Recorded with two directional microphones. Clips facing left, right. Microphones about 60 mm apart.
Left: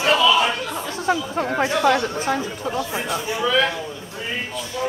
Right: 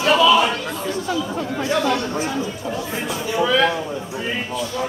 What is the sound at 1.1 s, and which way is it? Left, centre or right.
Speech, left.